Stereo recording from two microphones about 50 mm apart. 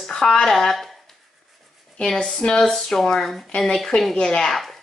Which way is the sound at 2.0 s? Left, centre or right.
Centre.